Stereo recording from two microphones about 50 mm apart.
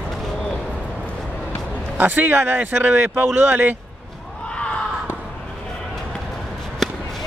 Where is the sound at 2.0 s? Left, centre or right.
Right.